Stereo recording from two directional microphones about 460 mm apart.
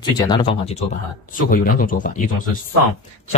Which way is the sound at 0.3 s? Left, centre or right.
Centre.